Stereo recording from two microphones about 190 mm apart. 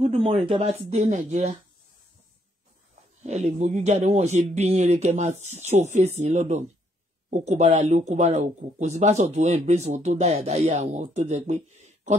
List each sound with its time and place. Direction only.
0.0 s speech: 30° right (ahead or behind)
3.3 s speech: 35° right (ahead or behind)